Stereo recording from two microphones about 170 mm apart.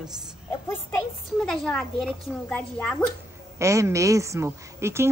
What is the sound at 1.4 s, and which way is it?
Speech, 5° left (ahead or behind).